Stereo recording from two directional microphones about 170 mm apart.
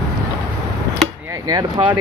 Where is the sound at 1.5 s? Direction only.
25° right (ahead or behind).